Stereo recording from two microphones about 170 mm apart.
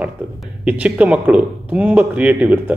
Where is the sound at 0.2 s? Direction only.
10° right (ahead or behind).